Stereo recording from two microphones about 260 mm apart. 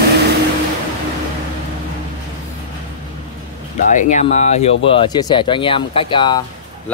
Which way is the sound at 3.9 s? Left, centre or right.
Left.